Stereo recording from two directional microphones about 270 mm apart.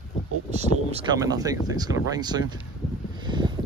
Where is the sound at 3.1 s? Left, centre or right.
Centre.